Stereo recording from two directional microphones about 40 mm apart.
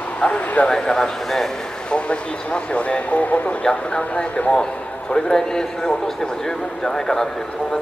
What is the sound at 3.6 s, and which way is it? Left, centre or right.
A man's voice, left.